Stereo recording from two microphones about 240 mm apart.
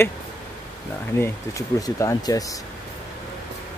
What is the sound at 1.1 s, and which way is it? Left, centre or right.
Speech, centre.